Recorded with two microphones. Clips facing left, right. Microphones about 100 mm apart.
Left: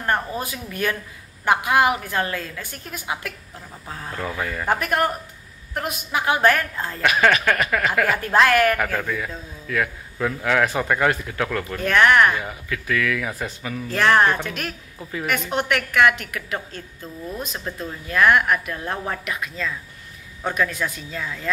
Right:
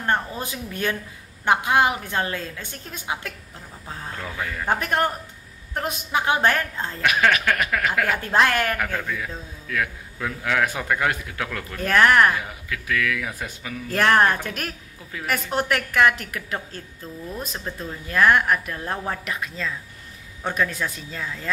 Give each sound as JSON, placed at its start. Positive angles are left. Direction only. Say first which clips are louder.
{"t": 0.0, "sound": "a woman's voice", "louder": "left 1 dB", "side_deg": -25}
{"t": 4.1, "sound": "speech", "louder": "left 4 dB", "side_deg": 5}
{"t": 4.6, "sound": "a woman's voice", "louder": "left 1 dB", "side_deg": -30}
{"t": 7.0, "sound": "speech", "louder": "left 2 dB", "side_deg": 0}
{"t": 8.2, "sound": "a woman's voice", "louder": "left 5 dB", "side_deg": -25}
{"t": 8.7, "sound": "speech", "louder": "left 3 dB", "side_deg": 5}
{"t": 11.8, "sound": "a woman's voice", "louder": "left 1 dB", "side_deg": -35}
{"t": 12.3, "sound": "speech", "louder": "left 1 dB", "side_deg": 0}
{"t": 13.8, "sound": "a woman's voice", "louder": "left 1 dB", "side_deg": -50}
{"t": 17.5, "sound": "speech", "louder": "left 1 dB", "side_deg": 0}
{"t": 18.0, "sound": "a woman's voice", "louder": "left 1 dB", "side_deg": -35}